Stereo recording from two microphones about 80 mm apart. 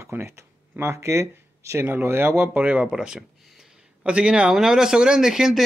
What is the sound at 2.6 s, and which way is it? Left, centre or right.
Speech, centre.